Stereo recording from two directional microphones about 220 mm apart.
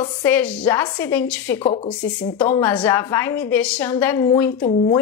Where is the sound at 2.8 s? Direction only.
10° left (ahead or behind).